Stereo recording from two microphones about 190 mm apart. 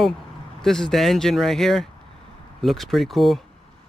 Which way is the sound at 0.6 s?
5° left (ahead or behind).